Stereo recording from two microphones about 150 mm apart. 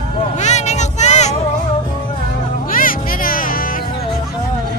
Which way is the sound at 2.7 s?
70° left (ahead or behind).